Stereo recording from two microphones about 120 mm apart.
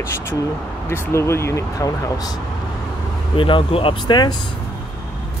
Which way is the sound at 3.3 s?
45° left (ahead or behind).